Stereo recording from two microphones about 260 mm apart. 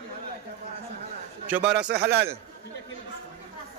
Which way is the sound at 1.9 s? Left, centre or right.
Right.